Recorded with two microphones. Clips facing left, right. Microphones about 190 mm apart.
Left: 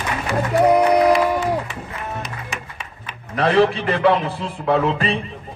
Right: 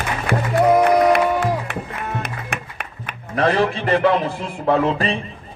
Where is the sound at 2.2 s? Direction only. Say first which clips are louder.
Right 2 dB; 60° right (ahead or behind).